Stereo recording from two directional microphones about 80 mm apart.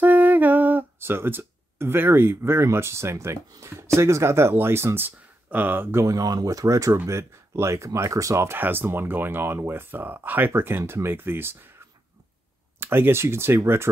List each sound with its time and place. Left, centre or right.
0.0 s speech: right
5.9 s speech: right
12.7 s speech: right